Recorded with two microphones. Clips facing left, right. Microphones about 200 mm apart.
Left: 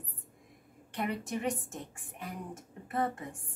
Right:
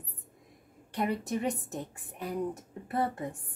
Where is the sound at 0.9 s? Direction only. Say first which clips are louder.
Right 4 dB; 40° right (ahead or behind).